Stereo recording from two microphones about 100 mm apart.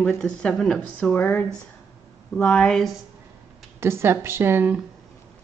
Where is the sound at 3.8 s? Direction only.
25° right (ahead or behind).